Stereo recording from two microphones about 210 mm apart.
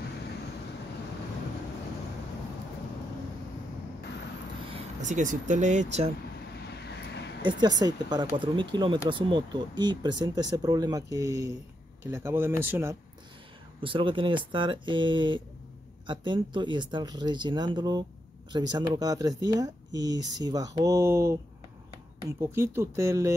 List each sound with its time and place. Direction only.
4.6 s speech: 30° right (ahead or behind)
6.6 s vehicle: 50° left (ahead or behind)
7.4 s speech: 20° right (ahead or behind)
13.7 s speech: 25° right (ahead or behind)
22.4 s speech: 10° right (ahead or behind)